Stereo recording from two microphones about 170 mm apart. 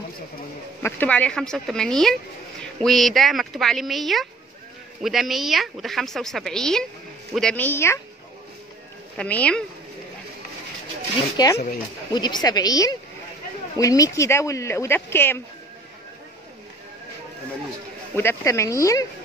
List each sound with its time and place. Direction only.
0.8 s speech: 10° left (ahead or behind)
9.1 s speech: 5° left (ahead or behind)
11.4 s a woman's voice: 25° left (ahead or behind)
18.1 s speech: 15° left (ahead or behind)